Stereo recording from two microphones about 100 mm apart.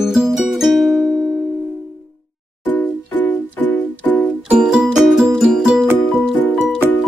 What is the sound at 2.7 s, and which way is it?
Music, 15° left (ahead or behind).